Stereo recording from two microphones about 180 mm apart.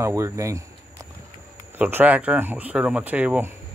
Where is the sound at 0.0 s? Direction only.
15° right (ahead or behind).